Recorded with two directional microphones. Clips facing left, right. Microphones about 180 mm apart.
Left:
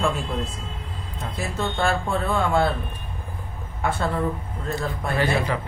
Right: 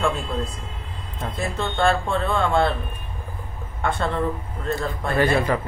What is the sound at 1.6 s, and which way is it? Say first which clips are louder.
Speech: right 3 dB; 5° left (ahead or behind).